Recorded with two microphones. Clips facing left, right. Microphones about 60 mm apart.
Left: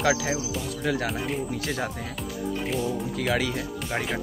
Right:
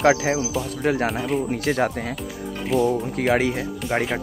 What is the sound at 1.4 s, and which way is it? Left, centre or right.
Speech, right.